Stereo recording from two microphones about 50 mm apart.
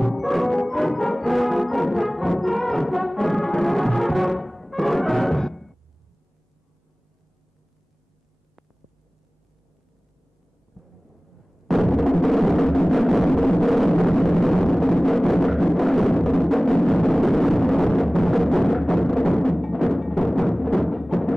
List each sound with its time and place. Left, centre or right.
0.0 s music: centre
10.8 s thunder: centre
11.6 s music: centre